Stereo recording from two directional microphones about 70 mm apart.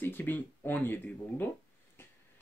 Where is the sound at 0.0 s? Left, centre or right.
Left.